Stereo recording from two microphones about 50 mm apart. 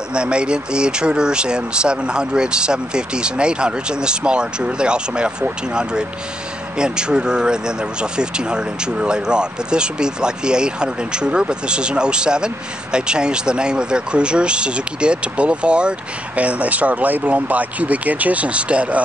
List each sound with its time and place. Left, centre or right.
0.1 s speech: centre